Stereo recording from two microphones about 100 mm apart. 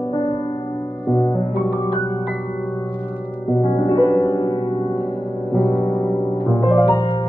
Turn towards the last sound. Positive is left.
turn(degrees=-20)  # may be behind; listen again after turning